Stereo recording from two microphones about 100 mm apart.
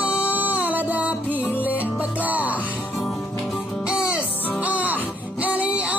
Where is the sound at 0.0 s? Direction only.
15° right (ahead or behind).